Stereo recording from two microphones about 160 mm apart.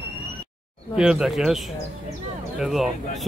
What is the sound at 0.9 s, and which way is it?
Speech, 5° right (ahead or behind).